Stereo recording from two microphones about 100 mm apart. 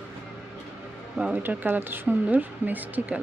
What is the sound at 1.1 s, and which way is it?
Speech, 10° right (ahead or behind).